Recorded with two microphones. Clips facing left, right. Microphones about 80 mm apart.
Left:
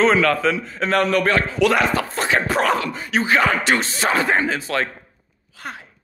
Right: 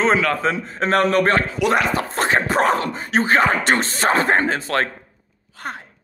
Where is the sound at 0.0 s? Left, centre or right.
Right.